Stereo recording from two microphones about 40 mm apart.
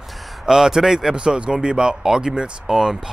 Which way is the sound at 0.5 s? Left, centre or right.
Centre.